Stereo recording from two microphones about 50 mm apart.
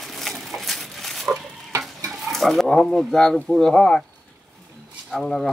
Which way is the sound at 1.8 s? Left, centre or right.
Centre.